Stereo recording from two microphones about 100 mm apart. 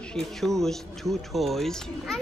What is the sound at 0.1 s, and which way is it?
Speech, 5° left (ahead or behind).